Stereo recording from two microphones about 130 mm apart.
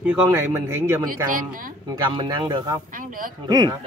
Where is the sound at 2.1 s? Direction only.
40° right (ahead or behind).